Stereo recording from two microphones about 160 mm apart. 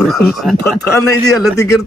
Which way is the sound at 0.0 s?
Centre (ahead or behind).